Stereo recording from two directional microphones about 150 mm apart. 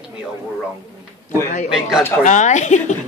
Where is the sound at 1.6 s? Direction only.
5° right (ahead or behind).